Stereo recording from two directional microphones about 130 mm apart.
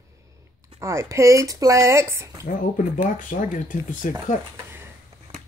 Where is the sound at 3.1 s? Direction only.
90° left.